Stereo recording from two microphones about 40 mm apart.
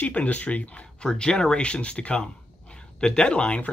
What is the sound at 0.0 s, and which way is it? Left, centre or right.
Speech, left.